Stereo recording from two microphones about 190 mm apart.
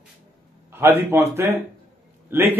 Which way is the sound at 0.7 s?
15° right (ahead or behind).